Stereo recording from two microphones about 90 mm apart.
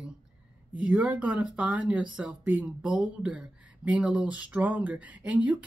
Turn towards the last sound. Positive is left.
turn(degrees=-15)  # may be behind; listen again after turning